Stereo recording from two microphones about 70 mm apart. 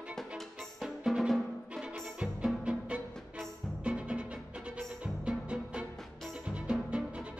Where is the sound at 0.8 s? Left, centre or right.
Centre.